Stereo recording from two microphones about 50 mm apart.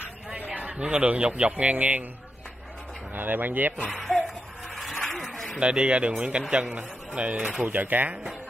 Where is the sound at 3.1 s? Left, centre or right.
Right.